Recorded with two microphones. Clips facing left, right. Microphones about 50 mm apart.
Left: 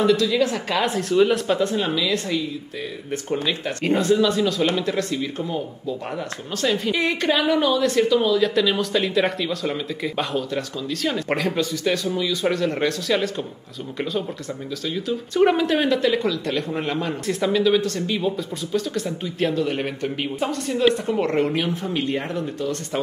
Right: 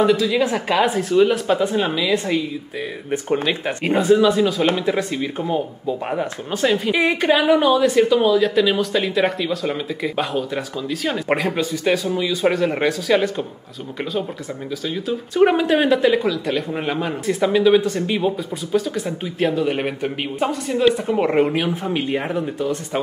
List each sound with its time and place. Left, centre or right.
0.0 s speech: centre; by 3.7 s right
3.8 s speech: centre
15.0 s speech: centre